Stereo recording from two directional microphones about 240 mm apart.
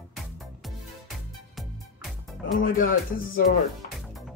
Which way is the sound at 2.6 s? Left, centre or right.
Left.